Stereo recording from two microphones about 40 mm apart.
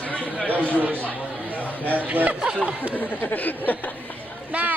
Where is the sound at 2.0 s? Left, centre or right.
Right.